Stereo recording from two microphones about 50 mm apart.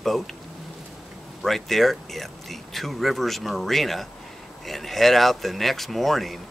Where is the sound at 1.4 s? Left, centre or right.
Centre.